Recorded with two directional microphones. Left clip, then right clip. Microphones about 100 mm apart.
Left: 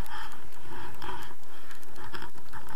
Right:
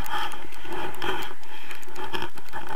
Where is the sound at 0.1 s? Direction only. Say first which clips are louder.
Right 11 dB; 20° right (ahead or behind).